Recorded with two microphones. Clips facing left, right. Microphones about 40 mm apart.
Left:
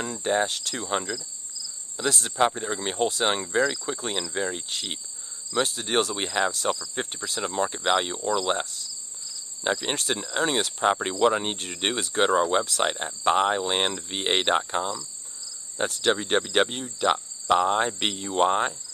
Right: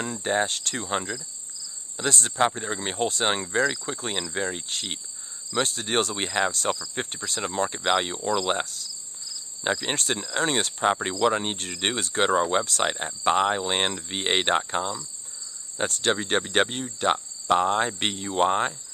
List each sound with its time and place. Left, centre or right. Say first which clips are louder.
0.0 s speech: even; centre
0.8 s speech: left 1 dB; centre
2.0 s speech: even; centre
6.1 s speech: even; centre
11.5 s speech: right 1 dB; left
12.1 s speech: left 1 dB; centre
12.6 s speech: even; centre
12.9 s speech: even; centre